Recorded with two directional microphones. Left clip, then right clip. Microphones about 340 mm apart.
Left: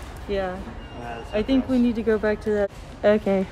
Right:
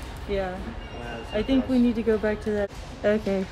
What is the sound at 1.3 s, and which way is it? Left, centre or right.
Speech, centre.